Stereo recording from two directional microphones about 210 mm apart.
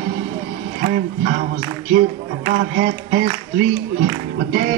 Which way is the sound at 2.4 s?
40° right (ahead or behind).